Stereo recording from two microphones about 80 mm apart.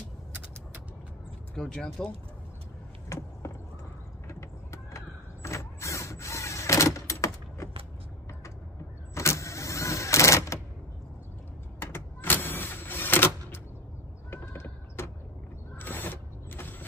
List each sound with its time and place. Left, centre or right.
1.5 s speech: centre
3.1 s a sound: left
4.3 s vehicle: left
9.1 s vehicle: left
11.8 s power windows: left
14.3 s a sound: left
15.8 s vehicle: left